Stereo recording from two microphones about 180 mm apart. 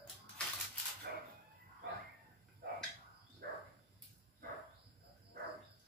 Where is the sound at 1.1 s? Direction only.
60° right (ahead or behind).